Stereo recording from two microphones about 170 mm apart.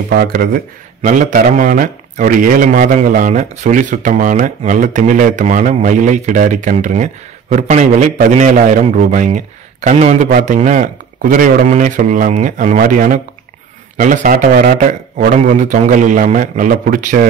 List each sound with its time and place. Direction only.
0.1 s speech: 60° right (ahead or behind)
1.0 s a man's voice: 50° right (ahead or behind)